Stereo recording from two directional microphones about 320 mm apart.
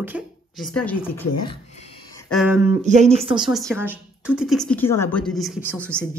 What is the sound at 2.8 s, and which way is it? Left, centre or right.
Speech, right.